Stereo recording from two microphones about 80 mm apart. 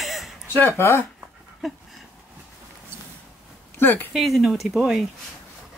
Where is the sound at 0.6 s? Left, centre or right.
Left.